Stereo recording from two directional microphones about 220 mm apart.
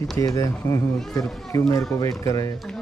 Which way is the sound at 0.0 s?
15° left (ahead or behind).